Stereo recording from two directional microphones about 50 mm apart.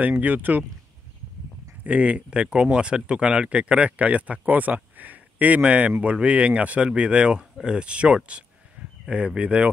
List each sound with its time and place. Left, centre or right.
0.2 s speech: right
1.9 s speech: right